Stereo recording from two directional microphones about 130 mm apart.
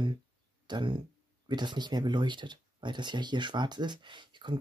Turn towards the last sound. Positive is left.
turn(degrees=-35)  # may be behind; listen again after turning